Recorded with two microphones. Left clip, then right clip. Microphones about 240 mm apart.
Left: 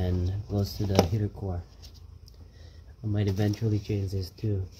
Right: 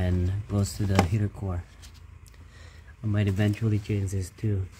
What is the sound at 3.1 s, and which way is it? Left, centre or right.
Speech, right.